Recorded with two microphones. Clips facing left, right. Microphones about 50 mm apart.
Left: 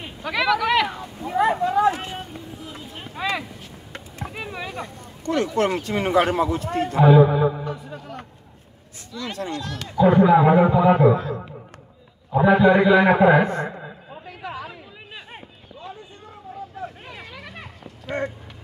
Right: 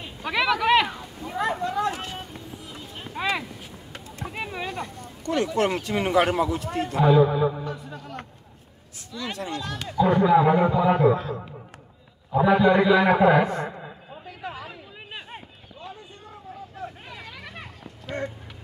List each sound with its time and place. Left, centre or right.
0.3 s speech: centre
0.8 s a sound: centre
5.2 s a man's voice: left
7.0 s a man's voice: centre
7.2 s a man's voice: left
7.5 s speech: centre
9.1 s speech: right
9.9 s a man's voice: centre
12.4 s a man's voice: left
17.1 s a sound: centre